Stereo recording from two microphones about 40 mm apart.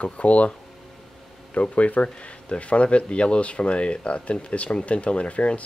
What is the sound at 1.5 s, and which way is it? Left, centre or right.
Speech, left.